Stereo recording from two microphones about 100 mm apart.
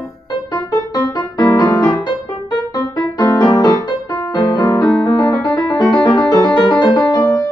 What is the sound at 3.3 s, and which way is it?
Music, 45° left (ahead or behind).